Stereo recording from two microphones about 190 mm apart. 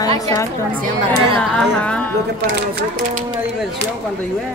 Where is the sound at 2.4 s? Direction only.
60° right (ahead or behind).